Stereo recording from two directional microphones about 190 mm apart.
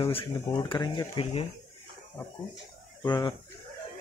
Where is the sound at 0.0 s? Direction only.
30° left (ahead or behind).